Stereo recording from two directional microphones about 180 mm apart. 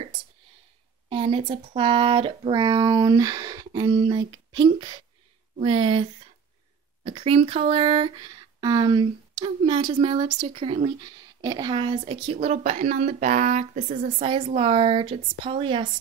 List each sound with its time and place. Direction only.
1.0 s speech: 30° right (ahead or behind)
7.1 s speech: 30° right (ahead or behind)
14.2 s speech: 30° right (ahead or behind)